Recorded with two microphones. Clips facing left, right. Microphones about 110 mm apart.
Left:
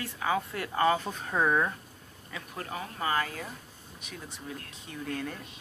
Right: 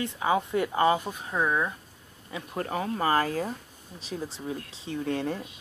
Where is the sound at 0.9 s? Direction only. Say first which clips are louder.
Right 1 dB; 10° right (ahead or behind).